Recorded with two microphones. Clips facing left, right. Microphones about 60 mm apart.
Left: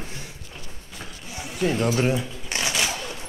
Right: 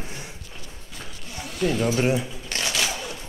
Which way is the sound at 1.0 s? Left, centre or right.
Centre.